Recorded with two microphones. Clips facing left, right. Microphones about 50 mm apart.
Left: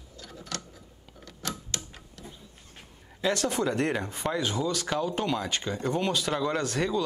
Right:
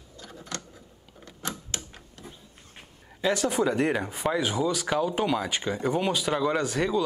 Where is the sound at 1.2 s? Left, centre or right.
Right.